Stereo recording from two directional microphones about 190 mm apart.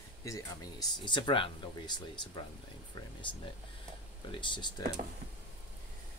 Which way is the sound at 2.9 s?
25° left (ahead or behind).